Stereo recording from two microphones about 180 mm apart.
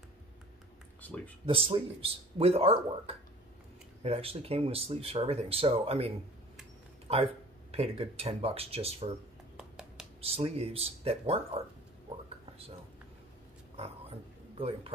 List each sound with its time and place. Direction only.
1.0 s speech: 10° left (ahead or behind)
1.4 s speech: 30° right (ahead or behind)
4.0 s speech: 35° right (ahead or behind)
9.6 s a sound: 5° right (ahead or behind)
10.2 s speech: 30° right (ahead or behind)
13.7 s a sound: 35° right (ahead or behind)
14.6 s speech: 30° right (ahead or behind)